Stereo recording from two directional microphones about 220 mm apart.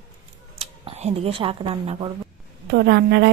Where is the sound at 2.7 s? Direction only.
50° right (ahead or behind).